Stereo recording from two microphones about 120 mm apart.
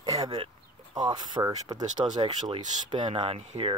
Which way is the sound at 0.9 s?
35° right (ahead or behind).